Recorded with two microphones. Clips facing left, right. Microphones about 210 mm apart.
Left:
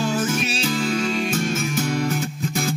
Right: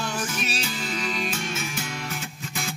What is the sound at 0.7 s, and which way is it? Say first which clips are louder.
Music: left 10 dB; 45° left (ahead or behind).